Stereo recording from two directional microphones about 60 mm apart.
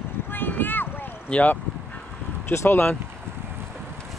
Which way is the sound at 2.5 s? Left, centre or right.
Left.